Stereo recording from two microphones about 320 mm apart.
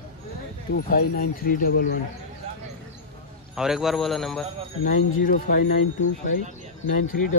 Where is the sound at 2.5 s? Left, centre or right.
Centre.